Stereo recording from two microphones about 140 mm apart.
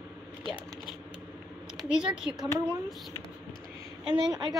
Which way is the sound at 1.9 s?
5° right (ahead or behind).